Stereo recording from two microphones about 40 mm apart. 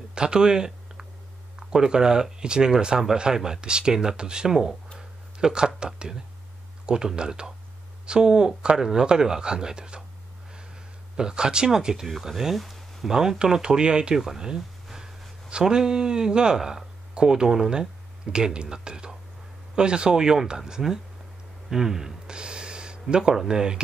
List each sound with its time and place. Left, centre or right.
0.1 s speech: centre
4.9 s a sound: centre
5.8 s speech: centre
11.1 s speech: centre
15.5 s speech: centre
22.3 s a sound: right
23.5 s speech: centre